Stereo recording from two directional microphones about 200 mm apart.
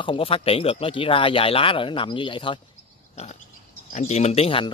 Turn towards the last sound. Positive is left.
turn(degrees=30)  # may be behind; listen again after turning